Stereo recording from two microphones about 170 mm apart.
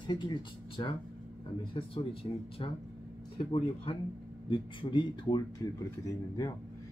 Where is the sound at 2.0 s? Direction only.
30° left (ahead or behind).